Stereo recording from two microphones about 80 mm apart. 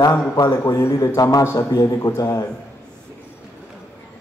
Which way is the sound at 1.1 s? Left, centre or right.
Left.